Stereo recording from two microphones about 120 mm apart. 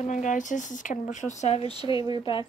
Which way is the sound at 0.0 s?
90° left.